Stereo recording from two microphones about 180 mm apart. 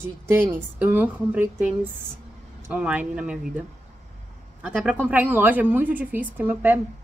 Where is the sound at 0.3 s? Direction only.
10° right (ahead or behind).